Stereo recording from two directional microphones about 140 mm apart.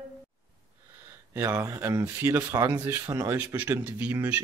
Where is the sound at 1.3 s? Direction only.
20° right (ahead or behind).